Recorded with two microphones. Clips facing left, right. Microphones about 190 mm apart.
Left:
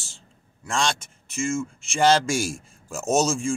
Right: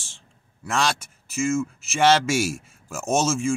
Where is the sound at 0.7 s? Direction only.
30° left (ahead or behind).